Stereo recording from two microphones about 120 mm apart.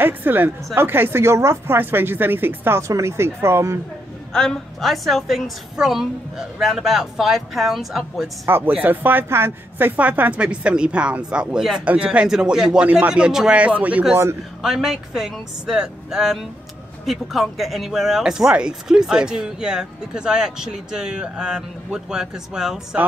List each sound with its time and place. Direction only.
0.0 s speech: 15° right (ahead or behind)
4.3 s speech: 5° left (ahead or behind)
8.5 s speech: 15° right (ahead or behind)